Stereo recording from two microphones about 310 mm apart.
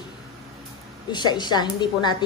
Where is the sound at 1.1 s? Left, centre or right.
Centre.